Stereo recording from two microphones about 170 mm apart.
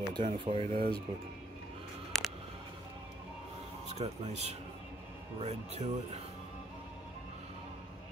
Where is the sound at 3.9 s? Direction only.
40° right (ahead or behind).